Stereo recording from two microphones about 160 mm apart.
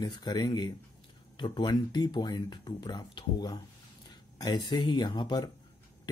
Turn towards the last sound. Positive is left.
turn(degrees=25)  # may be behind; listen again after turning